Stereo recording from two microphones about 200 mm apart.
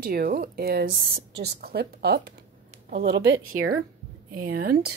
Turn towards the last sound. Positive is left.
turn(degrees=-50)  # may be behind; listen again after turning